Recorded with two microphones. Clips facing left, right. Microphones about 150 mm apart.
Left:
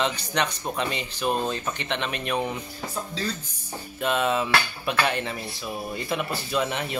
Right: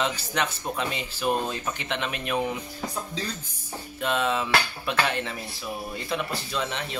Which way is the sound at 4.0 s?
5° left (ahead or behind).